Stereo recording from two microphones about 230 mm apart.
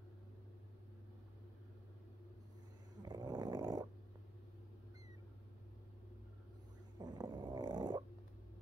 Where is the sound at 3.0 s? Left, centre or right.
Centre.